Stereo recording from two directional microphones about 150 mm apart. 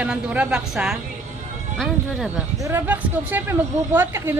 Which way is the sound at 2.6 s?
15° right (ahead or behind).